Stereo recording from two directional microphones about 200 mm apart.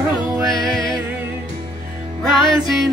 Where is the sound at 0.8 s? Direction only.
20° right (ahead or behind).